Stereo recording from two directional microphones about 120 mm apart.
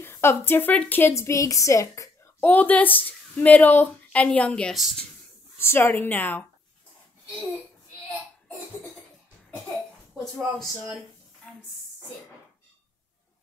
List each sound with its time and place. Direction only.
0.0 s a woman's voice: 20° left (ahead or behind)
2.4 s a woman's voice: 15° left (ahead or behind)
10.1 s speech: centre (ahead or behind)